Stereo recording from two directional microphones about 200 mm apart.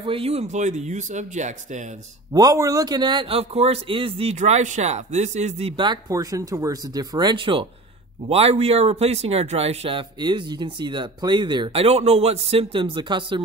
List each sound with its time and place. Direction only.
0.0 s speech: 30° right (ahead or behind)
2.3 s a man's voice: 15° right (ahead or behind)